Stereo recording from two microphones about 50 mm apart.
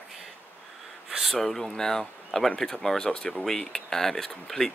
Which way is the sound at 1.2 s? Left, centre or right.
Centre.